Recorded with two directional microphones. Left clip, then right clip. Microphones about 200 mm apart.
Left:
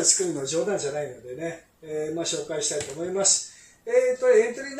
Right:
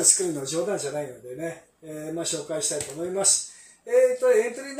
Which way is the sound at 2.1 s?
20° right (ahead or behind).